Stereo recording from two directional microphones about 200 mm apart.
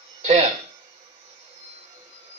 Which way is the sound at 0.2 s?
35° right (ahead or behind).